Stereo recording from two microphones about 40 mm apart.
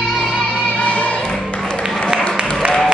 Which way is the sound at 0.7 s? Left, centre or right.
Left.